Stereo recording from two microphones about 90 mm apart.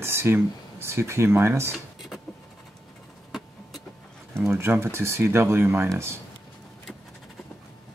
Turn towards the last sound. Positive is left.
turn(degrees=-30)  # may be behind; listen again after turning